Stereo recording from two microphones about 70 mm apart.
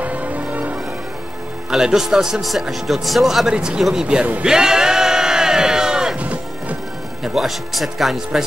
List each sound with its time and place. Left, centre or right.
0.0 s change ringing: right
1.7 s a man's voice: centre
7.3 s speech: centre